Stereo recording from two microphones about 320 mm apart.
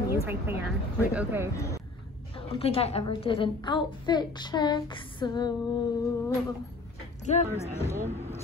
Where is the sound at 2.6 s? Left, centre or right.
Centre.